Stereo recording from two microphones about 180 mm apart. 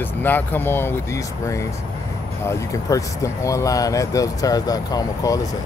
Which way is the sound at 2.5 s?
20° left (ahead or behind).